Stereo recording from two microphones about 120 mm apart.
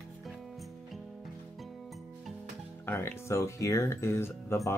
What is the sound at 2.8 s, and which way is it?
Speech, 20° left (ahead or behind).